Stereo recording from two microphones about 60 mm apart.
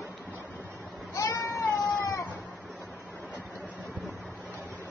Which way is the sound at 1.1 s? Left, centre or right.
Left.